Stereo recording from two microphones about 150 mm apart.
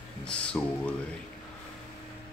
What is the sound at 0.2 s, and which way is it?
Music, 5° left (ahead or behind).